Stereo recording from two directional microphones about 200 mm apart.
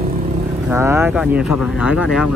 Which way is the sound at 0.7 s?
10° right (ahead or behind).